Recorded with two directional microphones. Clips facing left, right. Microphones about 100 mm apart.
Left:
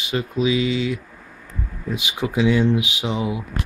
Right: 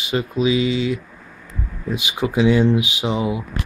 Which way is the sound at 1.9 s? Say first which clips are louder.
Right 2 dB; 20° right (ahead or behind).